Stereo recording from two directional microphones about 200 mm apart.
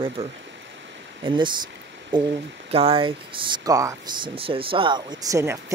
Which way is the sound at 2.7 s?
30° right (ahead or behind).